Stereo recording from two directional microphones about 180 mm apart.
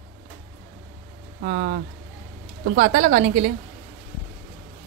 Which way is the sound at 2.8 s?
45° right (ahead or behind).